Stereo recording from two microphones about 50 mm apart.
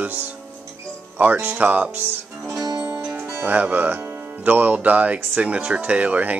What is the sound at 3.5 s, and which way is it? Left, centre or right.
Speech, right.